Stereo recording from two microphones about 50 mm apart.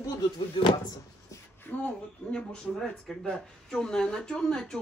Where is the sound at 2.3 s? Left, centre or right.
Centre.